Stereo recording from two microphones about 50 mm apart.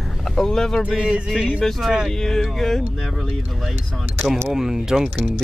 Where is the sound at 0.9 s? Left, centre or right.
Centre.